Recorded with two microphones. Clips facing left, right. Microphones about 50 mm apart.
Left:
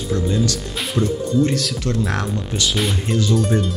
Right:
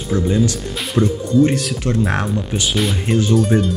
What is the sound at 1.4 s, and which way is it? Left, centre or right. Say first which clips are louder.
Speech: right 4 dB; right.